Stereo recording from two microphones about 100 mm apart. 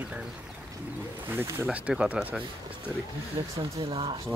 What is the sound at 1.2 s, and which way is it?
Speech, 20° right (ahead or behind).